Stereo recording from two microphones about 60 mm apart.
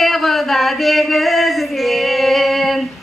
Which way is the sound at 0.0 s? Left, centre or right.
Centre.